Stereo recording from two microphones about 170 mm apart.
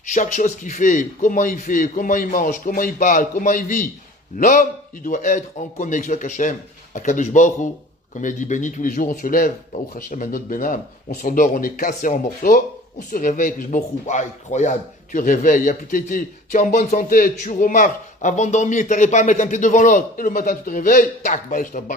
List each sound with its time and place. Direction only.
0.0 s speech: 45° left (ahead or behind)